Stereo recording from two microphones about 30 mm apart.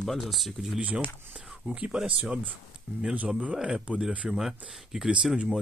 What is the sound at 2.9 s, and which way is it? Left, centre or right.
Speech, right.